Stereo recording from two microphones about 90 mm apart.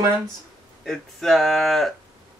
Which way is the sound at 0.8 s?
5° left (ahead or behind).